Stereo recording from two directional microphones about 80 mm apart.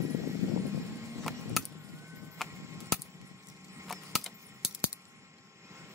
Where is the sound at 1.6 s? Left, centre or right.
Centre.